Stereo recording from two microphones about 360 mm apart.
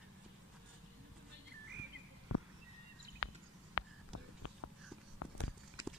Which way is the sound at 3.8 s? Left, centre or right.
Left.